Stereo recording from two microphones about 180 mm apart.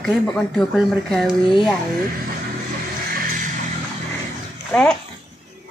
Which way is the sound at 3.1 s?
50° right (ahead or behind).